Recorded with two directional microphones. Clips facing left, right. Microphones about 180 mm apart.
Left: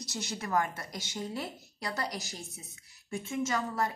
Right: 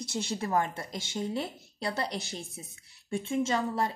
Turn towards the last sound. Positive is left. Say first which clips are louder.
# right 2 dB
turn(degrees=-25)  # may be behind; listen again after turning